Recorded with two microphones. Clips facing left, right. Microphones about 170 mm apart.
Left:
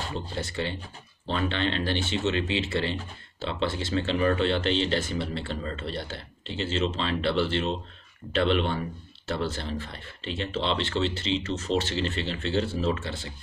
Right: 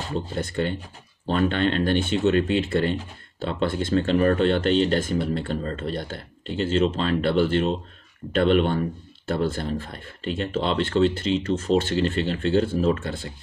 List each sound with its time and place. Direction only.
0.4 s speech: 50° right (ahead or behind)